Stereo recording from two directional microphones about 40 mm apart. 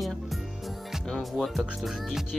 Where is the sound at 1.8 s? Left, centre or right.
Centre.